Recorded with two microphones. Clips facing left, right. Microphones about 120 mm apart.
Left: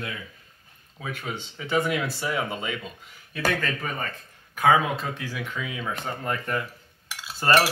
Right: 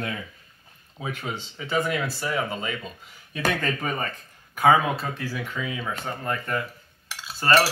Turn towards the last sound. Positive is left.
turn(degrees=15)  # may be behind; listen again after turning